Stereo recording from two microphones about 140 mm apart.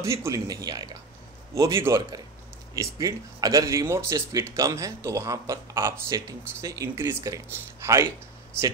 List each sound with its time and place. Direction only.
0.0 s speech: 20° right (ahead or behind)